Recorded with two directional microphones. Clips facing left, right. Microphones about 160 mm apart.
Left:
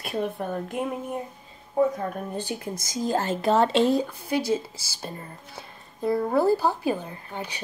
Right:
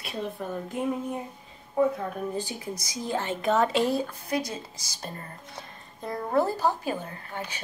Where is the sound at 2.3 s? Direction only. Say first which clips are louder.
Left 2 dB; 60° left (ahead or behind).